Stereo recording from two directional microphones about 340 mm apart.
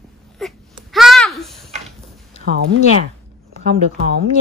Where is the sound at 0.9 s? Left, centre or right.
Centre.